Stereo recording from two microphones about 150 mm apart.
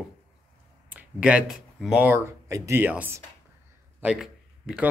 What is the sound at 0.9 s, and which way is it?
Speech, 10° right (ahead or behind).